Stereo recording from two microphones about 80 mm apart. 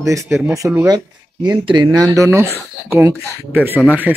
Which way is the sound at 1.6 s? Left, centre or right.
Right.